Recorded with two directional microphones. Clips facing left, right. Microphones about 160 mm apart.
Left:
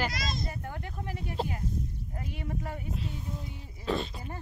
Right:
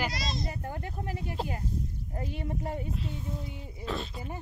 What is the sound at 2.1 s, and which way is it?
Speech, 30° right (ahead or behind).